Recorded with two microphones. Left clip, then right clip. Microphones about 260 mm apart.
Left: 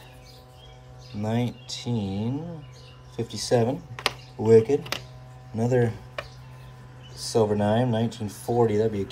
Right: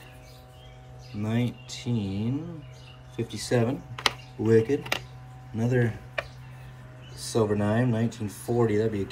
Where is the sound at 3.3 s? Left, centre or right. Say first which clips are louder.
Left 4 dB; centre.